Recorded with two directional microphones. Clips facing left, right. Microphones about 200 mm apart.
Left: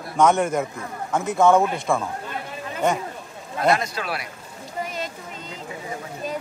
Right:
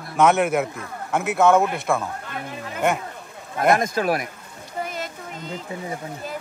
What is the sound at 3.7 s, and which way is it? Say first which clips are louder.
Speech: right 7 dB; 45° right (ahead or behind).